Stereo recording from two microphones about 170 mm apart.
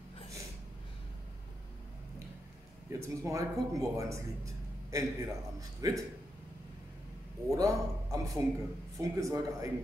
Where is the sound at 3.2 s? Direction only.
20° right (ahead or behind).